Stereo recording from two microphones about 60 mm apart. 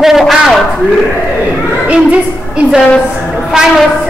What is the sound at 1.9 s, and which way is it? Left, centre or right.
Speech, right.